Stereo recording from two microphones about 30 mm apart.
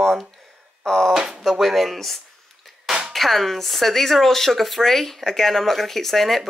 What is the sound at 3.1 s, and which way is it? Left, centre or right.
Speech, centre.